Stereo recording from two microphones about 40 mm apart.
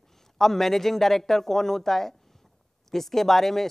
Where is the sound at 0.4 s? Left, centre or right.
Centre.